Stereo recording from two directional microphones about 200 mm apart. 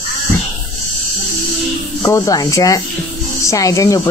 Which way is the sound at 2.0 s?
15° left (ahead or behind).